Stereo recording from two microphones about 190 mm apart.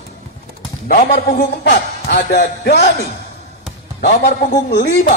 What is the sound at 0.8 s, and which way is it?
A man's voice, 50° left (ahead or behind).